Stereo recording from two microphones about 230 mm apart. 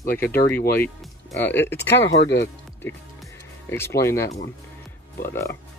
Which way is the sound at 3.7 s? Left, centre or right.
Centre.